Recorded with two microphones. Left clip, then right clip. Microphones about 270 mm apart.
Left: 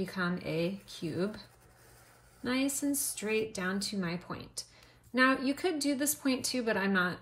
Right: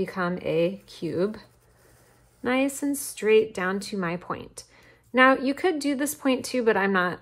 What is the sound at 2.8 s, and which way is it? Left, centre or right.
Speech, right.